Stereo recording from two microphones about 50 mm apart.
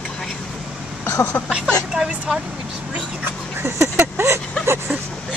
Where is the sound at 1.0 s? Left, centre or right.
Left.